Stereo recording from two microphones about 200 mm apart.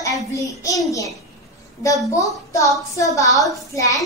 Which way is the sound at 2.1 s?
15° left (ahead or behind).